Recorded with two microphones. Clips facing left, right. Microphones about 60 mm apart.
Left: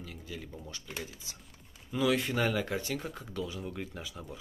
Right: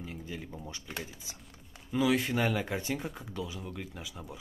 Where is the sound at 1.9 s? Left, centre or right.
Centre.